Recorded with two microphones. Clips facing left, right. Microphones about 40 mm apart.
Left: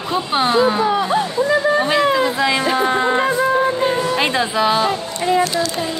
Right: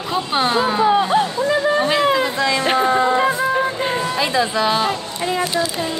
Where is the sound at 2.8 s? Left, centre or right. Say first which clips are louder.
Right 1 dB; left.